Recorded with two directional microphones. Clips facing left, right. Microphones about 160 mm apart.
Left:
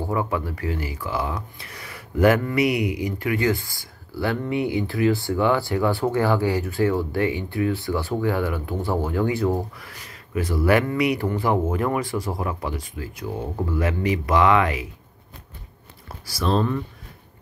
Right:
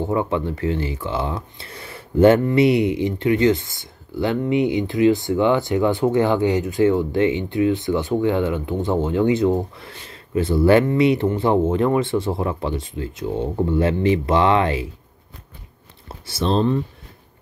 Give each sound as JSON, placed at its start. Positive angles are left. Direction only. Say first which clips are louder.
{"t": 0.0, "sound": "speech", "louder": "right 4 dB", "side_deg": -25}
{"t": 16.1, "sound": "speech", "louder": "right 2 dB", "side_deg": -25}